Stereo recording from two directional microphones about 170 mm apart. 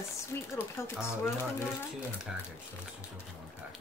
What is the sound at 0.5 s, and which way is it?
Speech, 15° left (ahead or behind).